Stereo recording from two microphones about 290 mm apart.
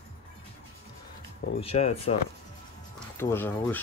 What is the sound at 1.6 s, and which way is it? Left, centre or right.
Speech, left.